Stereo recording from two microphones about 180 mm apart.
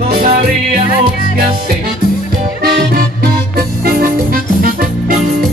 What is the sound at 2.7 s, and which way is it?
Music, 60° right (ahead or behind).